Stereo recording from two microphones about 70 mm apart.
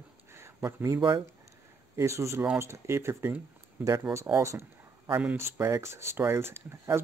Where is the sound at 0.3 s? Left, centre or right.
Right.